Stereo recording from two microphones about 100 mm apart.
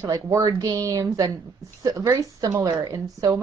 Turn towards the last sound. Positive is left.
turn(degrees=-35)  # may be behind; listen again after turning